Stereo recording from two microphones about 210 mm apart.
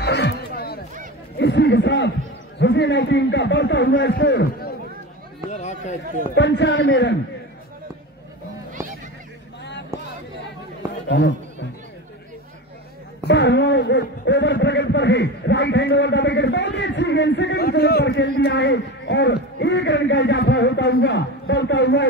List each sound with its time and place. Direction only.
0.0 s a sound: 50° left (ahead or behind)
2.6 s a man's voice: 55° left (ahead or behind)
5.5 s speech: 35° left (ahead or behind)
6.3 s a man's voice: 55° left (ahead or behind)
11.1 s speech: 55° left (ahead or behind)
13.2 s a man's voice: 55° left (ahead or behind)